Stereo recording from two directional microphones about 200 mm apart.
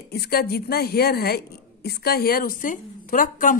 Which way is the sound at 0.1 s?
50° left (ahead or behind).